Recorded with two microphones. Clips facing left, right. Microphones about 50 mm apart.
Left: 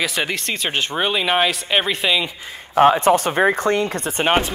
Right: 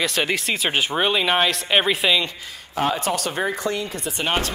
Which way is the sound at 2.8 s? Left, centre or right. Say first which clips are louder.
Left 9 dB; left.